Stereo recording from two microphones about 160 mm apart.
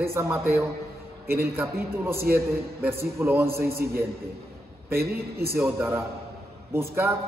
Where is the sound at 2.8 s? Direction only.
15° right (ahead or behind).